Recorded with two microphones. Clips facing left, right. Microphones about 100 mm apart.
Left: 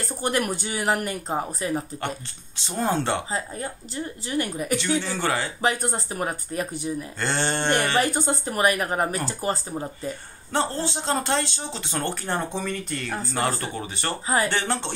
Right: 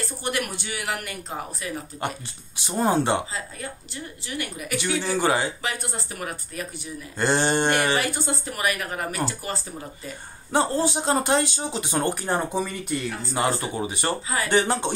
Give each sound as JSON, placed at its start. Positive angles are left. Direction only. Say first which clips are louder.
{"t": 0.2, "sound": "speech", "louder": "left 5 dB", "side_deg": 35}
{"t": 2.8, "sound": "speech", "louder": "right 3 dB", "side_deg": -15}
{"t": 3.3, "sound": "speech", "louder": "left 4 dB", "side_deg": 35}
{"t": 4.7, "sound": "speech", "louder": "right 2 dB", "side_deg": -10}
{"t": 5.6, "sound": "speech", "louder": "left 6 dB", "side_deg": 40}
{"t": 7.2, "sound": "speech", "louder": "right 6 dB", "side_deg": -15}
{"t": 8.3, "sound": "speech", "louder": "left 4 dB", "side_deg": 40}
{"t": 10.5, "sound": "speech", "louder": "right 3 dB", "side_deg": -10}
{"t": 14.2, "sound": "speech", "louder": "left 5 dB", "side_deg": 35}
{"t": 14.5, "sound": "speech", "louder": "right 5 dB", "side_deg": -15}